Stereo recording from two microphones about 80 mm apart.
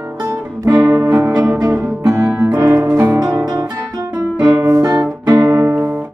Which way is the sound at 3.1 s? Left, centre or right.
Right.